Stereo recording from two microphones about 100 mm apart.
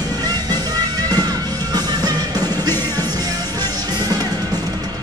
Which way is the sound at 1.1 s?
40° right (ahead or behind).